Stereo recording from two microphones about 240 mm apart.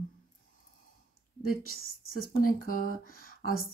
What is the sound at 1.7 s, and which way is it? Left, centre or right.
Speech, left.